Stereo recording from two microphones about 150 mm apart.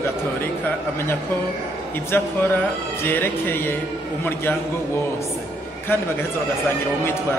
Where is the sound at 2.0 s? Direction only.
15° left (ahead or behind).